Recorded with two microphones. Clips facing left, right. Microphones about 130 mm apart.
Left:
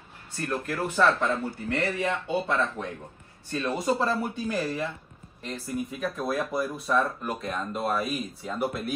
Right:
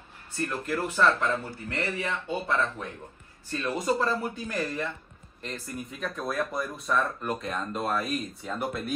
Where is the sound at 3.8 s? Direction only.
5° left (ahead or behind).